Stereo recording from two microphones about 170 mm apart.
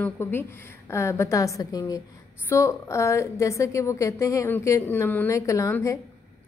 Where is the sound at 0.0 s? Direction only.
15° left (ahead or behind).